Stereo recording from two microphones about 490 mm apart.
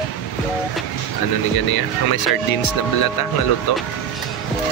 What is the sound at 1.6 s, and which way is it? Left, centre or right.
Speech, left.